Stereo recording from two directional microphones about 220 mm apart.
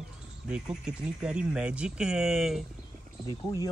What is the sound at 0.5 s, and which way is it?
Speech, 5° right (ahead or behind).